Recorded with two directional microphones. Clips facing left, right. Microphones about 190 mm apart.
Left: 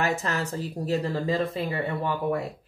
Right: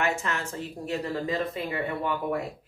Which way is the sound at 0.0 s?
35° left (ahead or behind).